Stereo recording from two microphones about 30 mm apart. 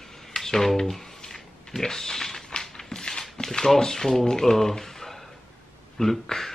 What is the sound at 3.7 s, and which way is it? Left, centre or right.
Speech, centre.